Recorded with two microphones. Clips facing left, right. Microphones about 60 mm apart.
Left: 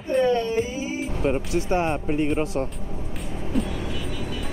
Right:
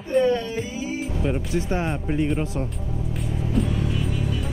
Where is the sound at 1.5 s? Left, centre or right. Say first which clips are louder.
Left 2 dB; left.